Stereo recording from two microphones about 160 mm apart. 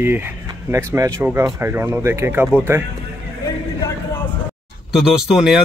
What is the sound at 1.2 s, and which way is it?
Speech, 15° right (ahead or behind).